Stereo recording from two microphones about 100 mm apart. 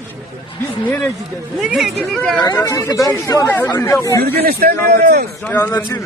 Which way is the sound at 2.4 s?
35° left (ahead or behind).